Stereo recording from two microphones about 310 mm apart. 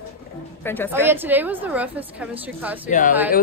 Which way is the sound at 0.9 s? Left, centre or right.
Centre.